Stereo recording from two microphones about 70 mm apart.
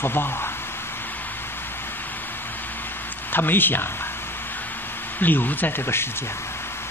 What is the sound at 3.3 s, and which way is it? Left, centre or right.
Speech, left.